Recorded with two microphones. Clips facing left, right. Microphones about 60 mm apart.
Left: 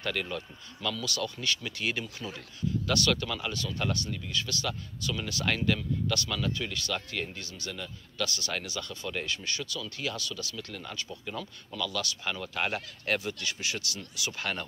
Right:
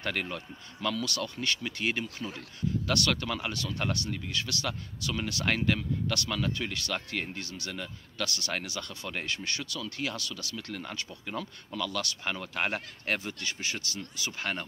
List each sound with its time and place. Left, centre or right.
0.0 s speech: right
1.6 s speech: right
2.9 s speech: right
3.5 s speech: right
5.1 s speech: right
7.7 s speech: right
10.5 s speech: right